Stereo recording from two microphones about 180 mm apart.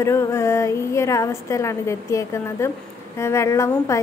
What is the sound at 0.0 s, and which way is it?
A woman's voice, 15° left (ahead or behind).